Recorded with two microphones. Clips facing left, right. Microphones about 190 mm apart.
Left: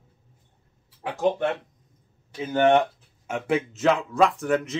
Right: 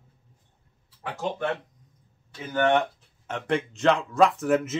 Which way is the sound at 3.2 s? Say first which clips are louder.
Left 2 dB; 5° left (ahead or behind).